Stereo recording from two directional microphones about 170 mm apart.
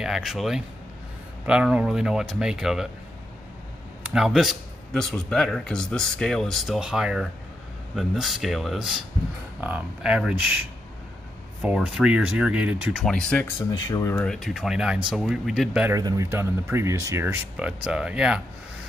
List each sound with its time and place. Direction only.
0.0 s a man's voice: centre (ahead or behind)
4.0 s a man's voice: 5° right (ahead or behind)
11.6 s speech: 5° right (ahead or behind)
13.0 s a man's voice: 5° left (ahead or behind)
13.8 s speech: 20° left (ahead or behind)
14.1 s a man's voice: 5° left (ahead or behind)
15.9 s a man's voice: 20° right (ahead or behind); by 18.4 s 5° right (ahead or behind)